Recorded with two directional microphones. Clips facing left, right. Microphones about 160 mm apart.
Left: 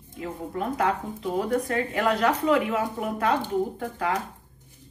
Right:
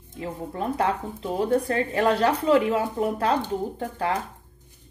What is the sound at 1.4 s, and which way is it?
Speech, 30° right (ahead or behind).